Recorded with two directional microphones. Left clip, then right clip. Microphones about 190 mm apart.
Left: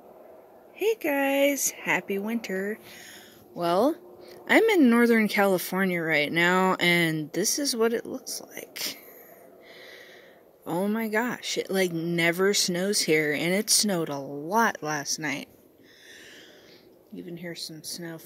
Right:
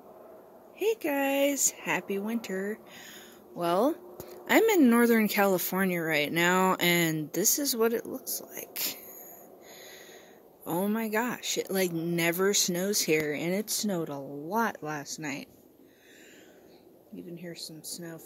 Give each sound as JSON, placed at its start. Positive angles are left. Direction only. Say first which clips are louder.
{"t": 0.7, "sound": "speech", "louder": "left 3 dB", "side_deg": 10}
{"t": 10.6, "sound": "speech", "louder": "left 2 dB", "side_deg": 15}
{"t": 17.3, "sound": "speech", "louder": "left 5 dB", "side_deg": 40}